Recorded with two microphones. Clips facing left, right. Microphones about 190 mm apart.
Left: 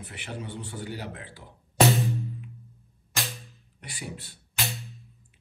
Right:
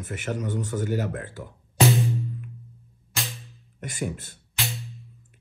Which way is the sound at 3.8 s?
45° right (ahead or behind).